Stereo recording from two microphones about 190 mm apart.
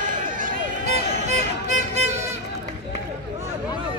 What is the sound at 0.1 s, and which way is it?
Music, 45° right (ahead or behind).